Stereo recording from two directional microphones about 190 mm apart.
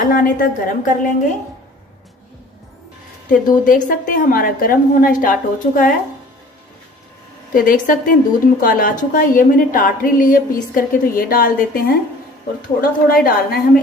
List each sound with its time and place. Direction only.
0.0 s a woman's voice: 45° left (ahead or behind)
3.3 s a woman's voice: 45° left (ahead or behind)
7.5 s a woman's voice: 45° left (ahead or behind)